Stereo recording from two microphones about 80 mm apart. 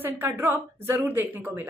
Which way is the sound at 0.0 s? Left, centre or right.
Right.